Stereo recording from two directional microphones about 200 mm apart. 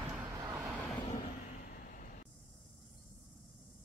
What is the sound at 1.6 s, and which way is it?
Vehicle, 45° left (ahead or behind).